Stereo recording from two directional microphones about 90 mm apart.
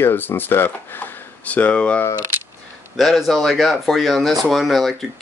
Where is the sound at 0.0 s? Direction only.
25° left (ahead or behind).